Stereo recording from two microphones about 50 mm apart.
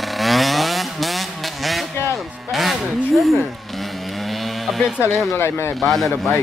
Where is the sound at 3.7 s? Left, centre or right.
Centre.